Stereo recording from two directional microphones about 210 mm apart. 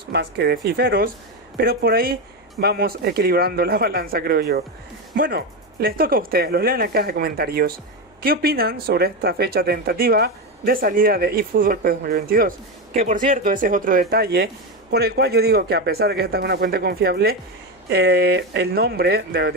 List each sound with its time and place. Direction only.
0.1 s speech: 50° right (ahead or behind)